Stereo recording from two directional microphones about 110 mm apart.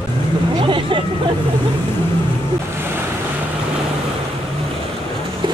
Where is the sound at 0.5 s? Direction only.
50° right (ahead or behind).